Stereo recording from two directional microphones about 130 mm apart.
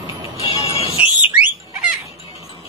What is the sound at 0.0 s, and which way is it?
Music, 45° left (ahead or behind).